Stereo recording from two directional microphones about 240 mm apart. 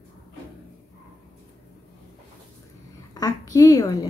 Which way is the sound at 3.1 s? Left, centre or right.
Centre.